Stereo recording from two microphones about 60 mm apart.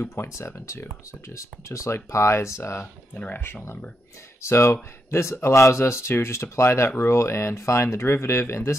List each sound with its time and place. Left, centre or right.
0.1 s speech: left
3.2 s speech: left
4.4 s speech: left